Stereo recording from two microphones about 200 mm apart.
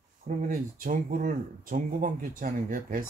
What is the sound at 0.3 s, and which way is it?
Speech, 40° right (ahead or behind).